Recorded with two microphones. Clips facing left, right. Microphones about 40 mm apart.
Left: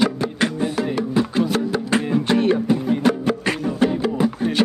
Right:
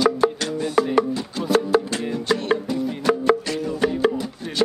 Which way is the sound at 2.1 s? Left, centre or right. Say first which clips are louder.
Left 3 dB; left.